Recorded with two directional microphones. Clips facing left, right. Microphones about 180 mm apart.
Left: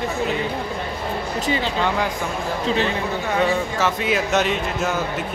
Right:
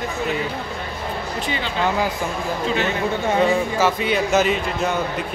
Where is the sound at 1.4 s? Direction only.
35° left (ahead or behind).